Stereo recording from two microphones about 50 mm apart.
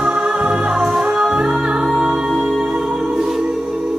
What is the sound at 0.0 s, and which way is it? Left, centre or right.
Music, centre.